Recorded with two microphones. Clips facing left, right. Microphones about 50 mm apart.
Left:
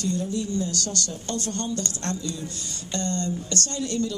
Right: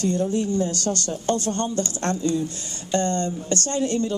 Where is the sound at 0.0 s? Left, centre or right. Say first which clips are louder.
Right 5 dB; right.